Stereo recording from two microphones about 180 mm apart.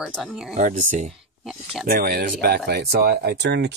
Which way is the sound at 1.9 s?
55° right (ahead or behind).